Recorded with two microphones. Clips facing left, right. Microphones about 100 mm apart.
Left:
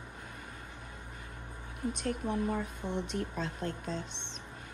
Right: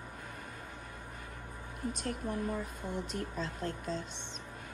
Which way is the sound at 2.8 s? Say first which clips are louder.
Left 3 dB; 5° right (ahead or behind).